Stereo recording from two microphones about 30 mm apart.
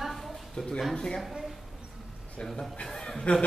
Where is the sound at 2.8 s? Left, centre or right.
Left.